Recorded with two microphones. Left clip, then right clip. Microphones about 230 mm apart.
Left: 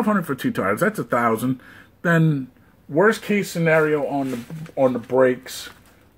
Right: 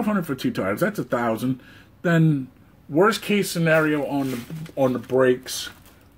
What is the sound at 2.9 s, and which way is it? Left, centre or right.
Speech, centre.